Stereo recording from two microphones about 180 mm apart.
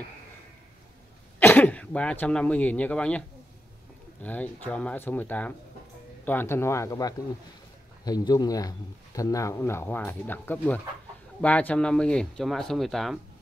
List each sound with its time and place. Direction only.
1.4 s speech: 10° left (ahead or behind)